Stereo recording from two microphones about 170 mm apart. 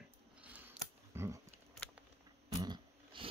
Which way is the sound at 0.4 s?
10° right (ahead or behind).